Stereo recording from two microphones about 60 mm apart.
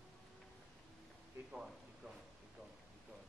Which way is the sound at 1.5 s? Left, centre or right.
Centre.